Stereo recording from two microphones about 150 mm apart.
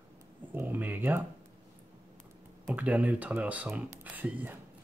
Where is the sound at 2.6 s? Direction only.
10° right (ahead or behind).